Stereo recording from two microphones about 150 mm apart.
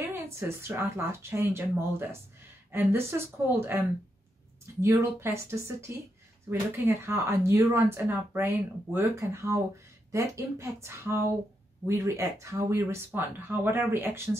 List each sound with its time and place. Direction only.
0.1 s speech: 15° right (ahead or behind)
4.8 s speech: 15° right (ahead or behind)